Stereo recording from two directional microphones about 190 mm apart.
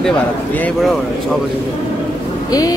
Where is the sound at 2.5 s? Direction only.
20° left (ahead or behind).